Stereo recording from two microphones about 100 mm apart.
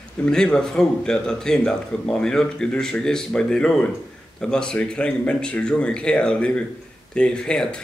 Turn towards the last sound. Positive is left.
turn(degrees=10)  # may be behind; listen again after turning